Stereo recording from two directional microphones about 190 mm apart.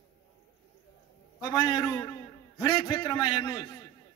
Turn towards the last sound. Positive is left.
turn(degrees=20)  # may be behind; listen again after turning